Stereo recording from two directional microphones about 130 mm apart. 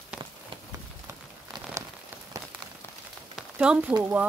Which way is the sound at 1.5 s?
25° right (ahead or behind).